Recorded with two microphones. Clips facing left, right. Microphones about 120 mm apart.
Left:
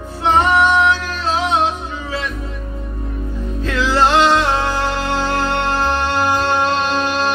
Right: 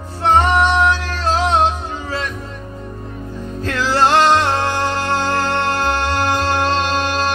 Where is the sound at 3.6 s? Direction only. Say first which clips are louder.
Even; 40° right (ahead or behind).